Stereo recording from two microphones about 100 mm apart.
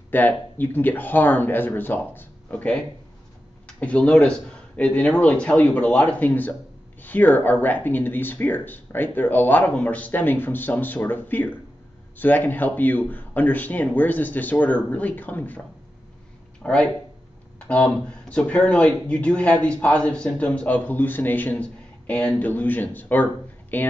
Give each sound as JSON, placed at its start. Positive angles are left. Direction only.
{"t": 0.1, "sound": "speech", "side_deg": 15}
{"t": 16.6, "sound": "speech", "side_deg": 10}